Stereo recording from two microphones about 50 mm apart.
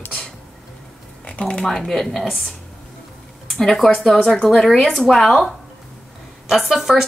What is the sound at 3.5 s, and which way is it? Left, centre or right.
Speech, centre.